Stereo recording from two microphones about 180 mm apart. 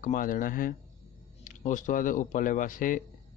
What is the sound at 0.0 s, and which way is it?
Speech, 50° left (ahead or behind).